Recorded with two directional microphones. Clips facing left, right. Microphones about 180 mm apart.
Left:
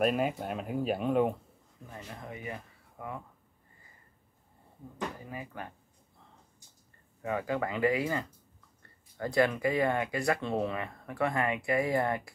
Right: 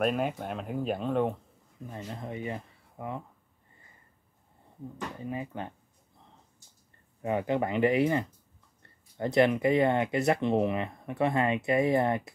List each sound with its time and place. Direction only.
0.0 s speech: 5° left (ahead or behind)
1.9 s speech: 25° right (ahead or behind)
5.2 s speech: 25° right (ahead or behind)
7.2 s speech: 25° right (ahead or behind)